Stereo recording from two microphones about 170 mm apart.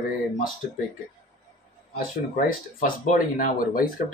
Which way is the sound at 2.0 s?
55° left (ahead or behind).